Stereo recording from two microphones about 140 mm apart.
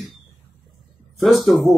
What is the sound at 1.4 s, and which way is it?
Speech, centre (ahead or behind).